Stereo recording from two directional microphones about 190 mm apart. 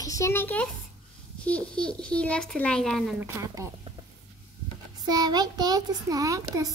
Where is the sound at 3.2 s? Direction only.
15° right (ahead or behind).